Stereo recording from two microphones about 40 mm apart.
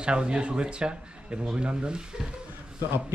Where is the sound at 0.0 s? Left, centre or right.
Right.